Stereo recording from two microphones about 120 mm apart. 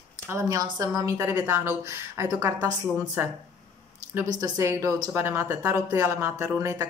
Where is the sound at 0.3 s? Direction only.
25° right (ahead or behind).